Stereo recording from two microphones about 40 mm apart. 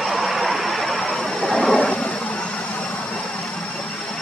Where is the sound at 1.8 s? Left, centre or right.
Left.